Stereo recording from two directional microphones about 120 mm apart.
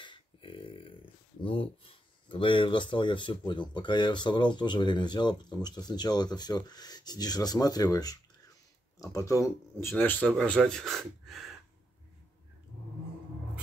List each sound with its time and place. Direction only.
0.0 s a sound: 45° left (ahead or behind)
2.2 s speech: 45° left (ahead or behind); by 9.8 s 25° left (ahead or behind)
9.9 s speech: 15° left (ahead or behind)